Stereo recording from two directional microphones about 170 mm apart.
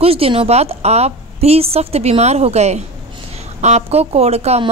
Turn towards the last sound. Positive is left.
turn(degrees=-40)  # may be behind; listen again after turning